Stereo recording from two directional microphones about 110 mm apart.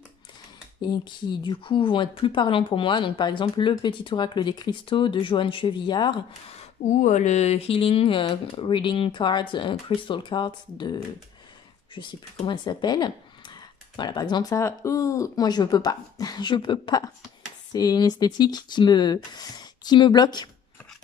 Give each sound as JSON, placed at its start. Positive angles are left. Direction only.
{"t": 0.7, "sound": "speech", "side_deg": 45}
{"t": 6.5, "sound": "speech", "side_deg": 85}
{"t": 14.5, "sound": "speech", "side_deg": 25}